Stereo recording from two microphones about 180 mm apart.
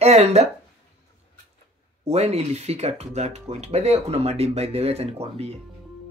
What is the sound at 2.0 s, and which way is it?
Speech, 35° right (ahead or behind).